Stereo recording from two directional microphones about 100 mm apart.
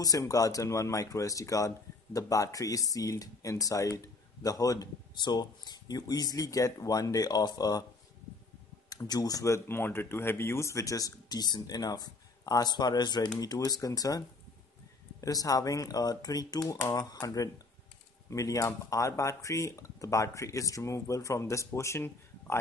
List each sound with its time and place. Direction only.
0.0 s speech: 35° left (ahead or behind)
5.1 s speech: 45° left (ahead or behind)
8.8 s speech: 40° left (ahead or behind)